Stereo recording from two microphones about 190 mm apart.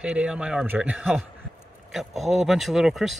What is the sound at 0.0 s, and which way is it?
Speech, 5° right (ahead or behind).